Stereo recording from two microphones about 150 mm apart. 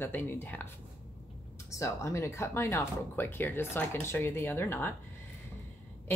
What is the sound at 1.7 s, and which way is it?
Speech, 20° left (ahead or behind).